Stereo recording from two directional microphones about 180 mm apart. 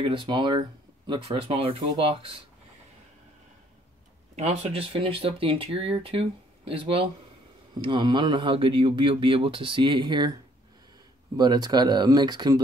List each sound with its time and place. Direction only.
0.0 s speech: 25° right (ahead or behind)
4.4 s speech: 35° right (ahead or behind)
11.3 s speech: 25° right (ahead or behind)